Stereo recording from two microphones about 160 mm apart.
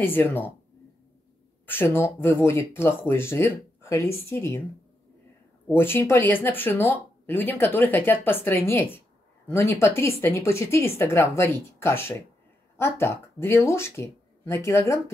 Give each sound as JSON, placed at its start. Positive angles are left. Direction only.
{"t": 0.0, "sound": "speech", "side_deg": 15}
{"t": 1.7, "sound": "speech", "side_deg": 15}
{"t": 5.7, "sound": "speech", "side_deg": 15}